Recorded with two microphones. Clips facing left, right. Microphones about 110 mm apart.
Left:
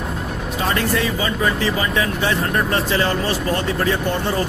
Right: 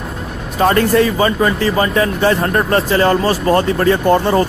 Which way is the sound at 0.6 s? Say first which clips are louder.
Right 9 dB; 50° right (ahead or behind).